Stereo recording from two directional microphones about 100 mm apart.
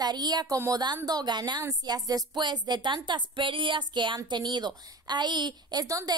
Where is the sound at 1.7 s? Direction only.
40° right (ahead or behind).